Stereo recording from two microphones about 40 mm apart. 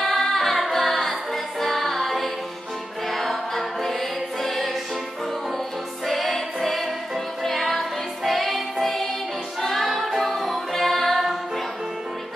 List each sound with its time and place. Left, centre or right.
0.0 s music: centre
3.1 s choir: centre
6.0 s music: centre